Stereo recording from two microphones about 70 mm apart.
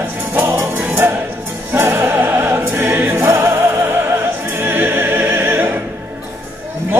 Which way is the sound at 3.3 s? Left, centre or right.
Right.